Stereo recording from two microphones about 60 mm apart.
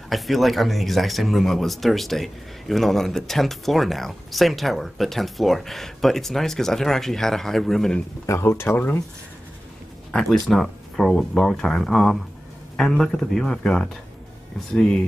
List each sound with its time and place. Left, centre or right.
0.1 s speech: centre
8.4 s speech: left
10.5 s speech: centre